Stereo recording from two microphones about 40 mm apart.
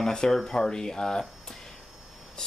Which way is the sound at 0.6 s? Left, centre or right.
Centre.